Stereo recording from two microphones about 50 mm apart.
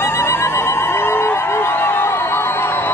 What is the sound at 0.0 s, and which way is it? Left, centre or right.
Music, left.